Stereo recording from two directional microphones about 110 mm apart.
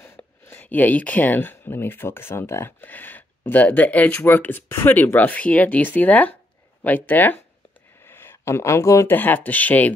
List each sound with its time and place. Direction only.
0.0 s speech: 15° left (ahead or behind)